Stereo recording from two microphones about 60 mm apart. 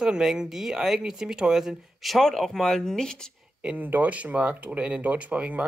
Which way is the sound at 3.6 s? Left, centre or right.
Right.